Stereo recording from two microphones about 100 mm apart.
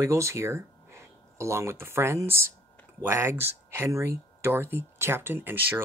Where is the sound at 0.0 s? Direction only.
30° right (ahead or behind).